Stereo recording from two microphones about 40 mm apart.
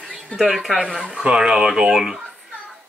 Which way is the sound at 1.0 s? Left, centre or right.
Right.